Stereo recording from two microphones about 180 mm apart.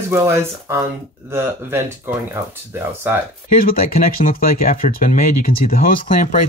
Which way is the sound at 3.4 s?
55° left (ahead or behind).